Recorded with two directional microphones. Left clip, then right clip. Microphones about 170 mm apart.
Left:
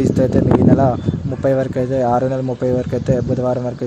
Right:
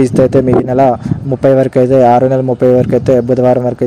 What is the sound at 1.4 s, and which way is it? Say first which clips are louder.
Speech: right 9 dB; 35° right (ahead or behind).